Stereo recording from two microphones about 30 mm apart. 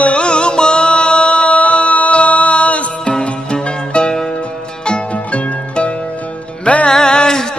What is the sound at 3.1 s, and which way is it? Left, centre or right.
Music, left.